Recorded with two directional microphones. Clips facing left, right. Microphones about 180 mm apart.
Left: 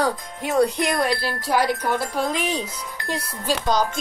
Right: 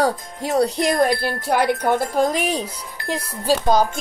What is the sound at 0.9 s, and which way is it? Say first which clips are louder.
Speech: right 4 dB; 50° right (ahead or behind).